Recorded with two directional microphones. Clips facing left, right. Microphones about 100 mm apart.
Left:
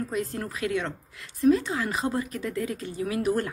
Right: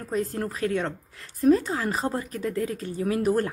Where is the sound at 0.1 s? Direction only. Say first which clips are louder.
Right 3 dB; 35° right (ahead or behind).